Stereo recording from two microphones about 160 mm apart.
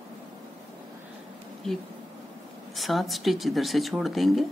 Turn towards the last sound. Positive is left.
turn(degrees=0)  # may be behind; listen again after turning